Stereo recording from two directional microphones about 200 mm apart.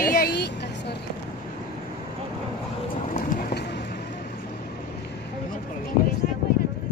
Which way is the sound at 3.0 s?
40° left (ahead or behind).